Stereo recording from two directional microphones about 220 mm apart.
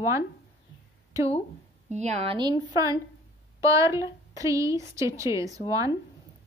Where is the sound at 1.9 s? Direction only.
30° right (ahead or behind).